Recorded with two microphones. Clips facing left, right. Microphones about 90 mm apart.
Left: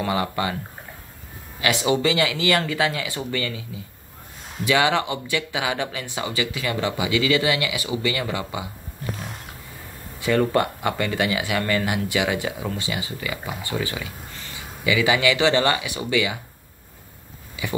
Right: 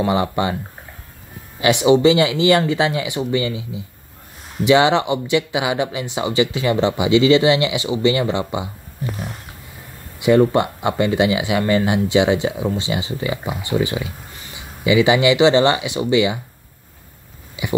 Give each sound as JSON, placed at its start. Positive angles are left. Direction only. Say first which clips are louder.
{"t": 0.0, "sound": "speech", "louder": "right 5 dB", "side_deg": -25}
{"t": 1.6, "sound": "speech", "louder": "right 8 dB", "side_deg": -20}
{"t": 10.1, "sound": "speech", "louder": "right 6 dB", "side_deg": -20}
{"t": 17.6, "sound": "a sound", "louder": "right 3 dB", "side_deg": -20}